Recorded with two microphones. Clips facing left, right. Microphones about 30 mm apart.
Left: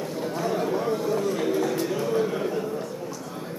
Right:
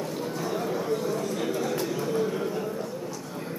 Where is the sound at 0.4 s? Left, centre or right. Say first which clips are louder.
Left 5 dB; centre.